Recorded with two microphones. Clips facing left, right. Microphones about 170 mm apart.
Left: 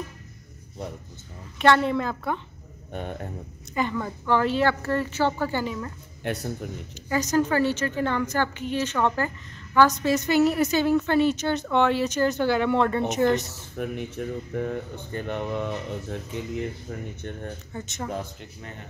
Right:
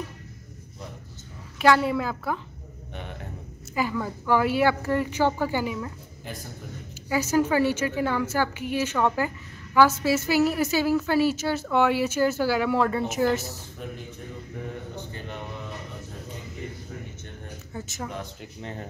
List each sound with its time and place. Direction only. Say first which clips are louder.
1.6 s a woman's voice: even; 5° right (ahead or behind)
2.9 s a man's voice: left 6 dB; 45° left (ahead or behind)
3.7 s a woman's voice: even; 5° right (ahead or behind)
6.2 s a man's voice: left 9 dB; 75° left (ahead or behind)
7.1 s a woman's voice: even; 10° right (ahead or behind)
13.7 s speech: left 12 dB; 65° left (ahead or behind)
17.7 s a woman's voice: left 2 dB; centre (ahead or behind)
18.6 s speech: right 6 dB; 30° right (ahead or behind)